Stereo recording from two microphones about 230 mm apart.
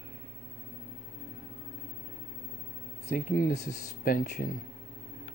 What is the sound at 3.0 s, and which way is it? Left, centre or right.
Speech, left.